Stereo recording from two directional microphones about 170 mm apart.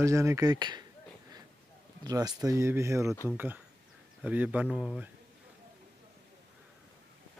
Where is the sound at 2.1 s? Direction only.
20° right (ahead or behind).